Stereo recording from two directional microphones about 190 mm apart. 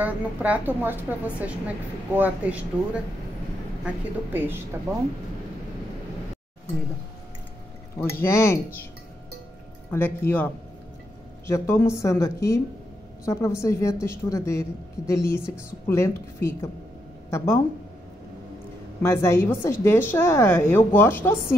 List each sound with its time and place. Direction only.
0.0 s a woman's voice: 10° right (ahead or behind)
8.0 s a woman's voice: 15° left (ahead or behind)
9.8 s a woman's voice: 10° left (ahead or behind)
19.0 s a woman's voice: 15° left (ahead or behind)